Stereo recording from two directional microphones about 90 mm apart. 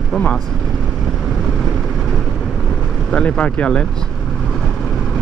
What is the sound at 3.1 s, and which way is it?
Speech, 15° left (ahead or behind).